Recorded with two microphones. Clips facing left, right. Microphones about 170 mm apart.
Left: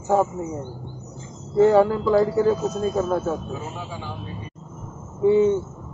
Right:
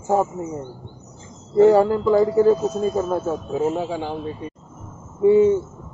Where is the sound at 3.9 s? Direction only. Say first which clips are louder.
Right 8 dB; 70° right (ahead or behind).